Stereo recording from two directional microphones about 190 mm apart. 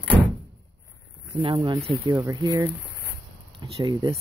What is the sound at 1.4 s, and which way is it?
Speech, 25° right (ahead or behind).